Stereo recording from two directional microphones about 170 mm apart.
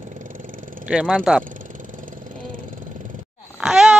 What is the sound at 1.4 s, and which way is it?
Vehicle, 50° right (ahead or behind).